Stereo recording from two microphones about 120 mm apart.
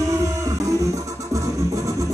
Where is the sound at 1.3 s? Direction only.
25° right (ahead or behind).